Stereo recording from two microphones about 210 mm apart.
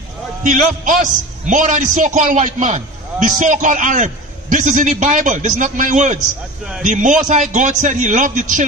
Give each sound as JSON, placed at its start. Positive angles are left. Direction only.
{"t": 0.4, "sound": "a man's voice", "side_deg": -35}